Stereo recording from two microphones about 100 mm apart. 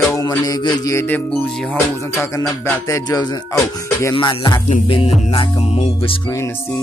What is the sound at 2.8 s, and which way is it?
Speech, 35° left (ahead or behind).